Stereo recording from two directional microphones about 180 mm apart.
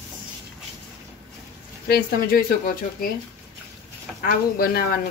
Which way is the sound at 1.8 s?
55° left (ahead or behind).